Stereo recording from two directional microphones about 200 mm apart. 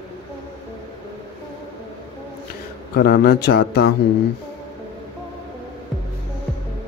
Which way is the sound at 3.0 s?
50° left (ahead or behind).